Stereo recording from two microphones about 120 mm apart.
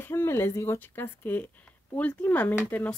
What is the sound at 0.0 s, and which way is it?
Speech, 20° left (ahead or behind).